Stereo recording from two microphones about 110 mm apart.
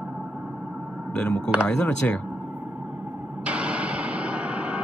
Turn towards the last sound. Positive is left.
turn(degrees=-10)  # may be behind; listen again after turning